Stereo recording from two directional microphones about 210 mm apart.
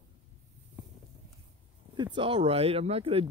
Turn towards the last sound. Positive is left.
turn(degrees=-25)  # may be behind; listen again after turning